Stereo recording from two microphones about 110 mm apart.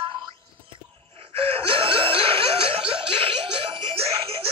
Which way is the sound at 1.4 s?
60° right (ahead or behind).